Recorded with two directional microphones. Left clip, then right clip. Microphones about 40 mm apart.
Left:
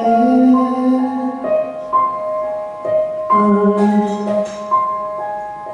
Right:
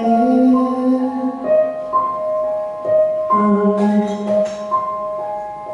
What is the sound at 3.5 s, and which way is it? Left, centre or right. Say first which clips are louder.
Music: left 2 dB; right.